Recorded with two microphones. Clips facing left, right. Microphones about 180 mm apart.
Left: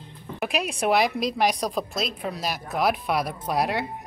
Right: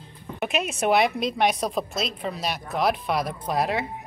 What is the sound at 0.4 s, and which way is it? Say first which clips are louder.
A woman's voice: right 1 dB; centre (ahead or behind).